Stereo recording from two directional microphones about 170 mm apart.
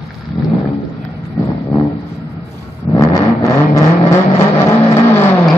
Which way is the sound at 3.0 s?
20° left (ahead or behind).